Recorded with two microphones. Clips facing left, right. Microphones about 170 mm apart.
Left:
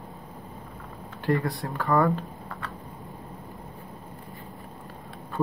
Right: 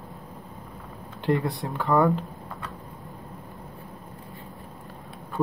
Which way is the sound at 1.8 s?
Centre (ahead or behind).